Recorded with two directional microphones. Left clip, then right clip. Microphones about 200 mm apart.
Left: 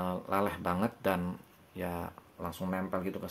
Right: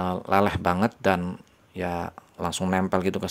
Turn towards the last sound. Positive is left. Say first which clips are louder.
# right 11 dB
turn(degrees=-55)  # may be behind; listen again after turning